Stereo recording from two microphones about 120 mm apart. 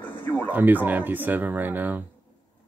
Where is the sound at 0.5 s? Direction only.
15° right (ahead or behind).